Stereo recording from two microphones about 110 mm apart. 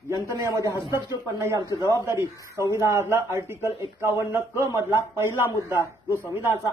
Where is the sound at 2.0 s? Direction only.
25° right (ahead or behind).